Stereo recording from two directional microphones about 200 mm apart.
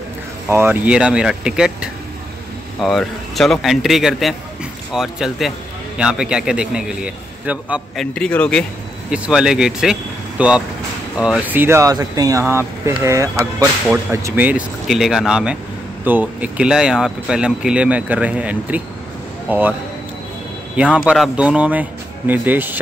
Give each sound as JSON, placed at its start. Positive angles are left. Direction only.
{"t": 0.5, "sound": "speech", "side_deg": -10}
{"t": 20.7, "sound": "speech", "side_deg": -5}